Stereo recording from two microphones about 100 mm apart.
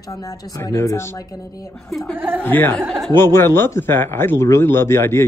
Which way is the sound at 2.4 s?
20° left (ahead or behind).